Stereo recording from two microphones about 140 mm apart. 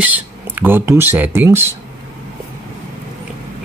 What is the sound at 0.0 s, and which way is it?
Speech, 10° right (ahead or behind).